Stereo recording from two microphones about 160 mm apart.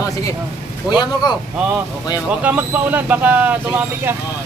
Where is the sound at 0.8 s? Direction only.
25° left (ahead or behind).